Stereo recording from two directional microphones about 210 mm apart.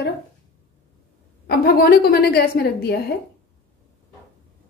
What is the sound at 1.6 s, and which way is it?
A woman's voice, 45° left (ahead or behind).